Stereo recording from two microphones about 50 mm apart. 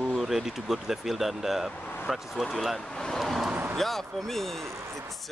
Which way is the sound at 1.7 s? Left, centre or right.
Left.